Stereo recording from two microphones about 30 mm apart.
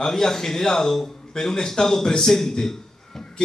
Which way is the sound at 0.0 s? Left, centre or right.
Centre.